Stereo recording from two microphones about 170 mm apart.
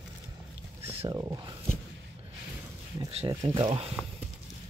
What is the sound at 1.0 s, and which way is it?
Speech, 20° right (ahead or behind).